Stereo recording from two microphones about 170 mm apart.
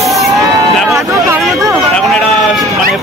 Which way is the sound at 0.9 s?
15° right (ahead or behind).